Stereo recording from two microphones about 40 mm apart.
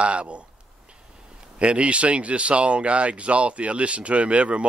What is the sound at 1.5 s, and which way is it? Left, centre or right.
Speech, right.